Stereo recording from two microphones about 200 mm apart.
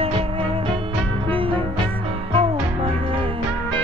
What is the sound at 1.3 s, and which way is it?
Music, 25° right (ahead or behind).